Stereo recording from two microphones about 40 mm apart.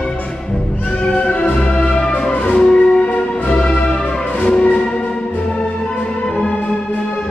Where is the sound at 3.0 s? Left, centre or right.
Left.